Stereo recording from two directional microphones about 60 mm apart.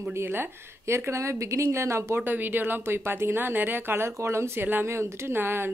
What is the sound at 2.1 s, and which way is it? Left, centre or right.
Speech, right.